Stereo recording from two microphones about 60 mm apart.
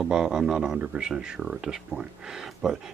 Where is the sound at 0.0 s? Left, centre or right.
Centre.